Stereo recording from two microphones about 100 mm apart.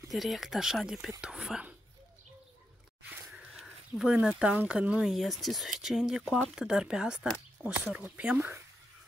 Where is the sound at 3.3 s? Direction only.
5° right (ahead or behind).